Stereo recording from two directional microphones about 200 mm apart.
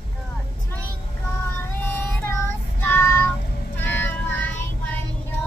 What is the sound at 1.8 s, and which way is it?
Child singing, 10° left (ahead or behind).